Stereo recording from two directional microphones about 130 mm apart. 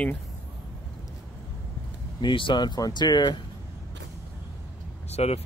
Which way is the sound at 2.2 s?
40° left (ahead or behind).